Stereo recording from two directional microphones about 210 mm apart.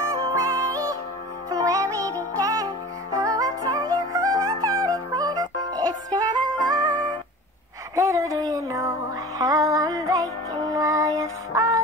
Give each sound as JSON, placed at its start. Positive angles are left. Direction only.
{"t": 0.1, "sound": "music", "side_deg": -15}
{"t": 7.9, "sound": "music", "side_deg": -15}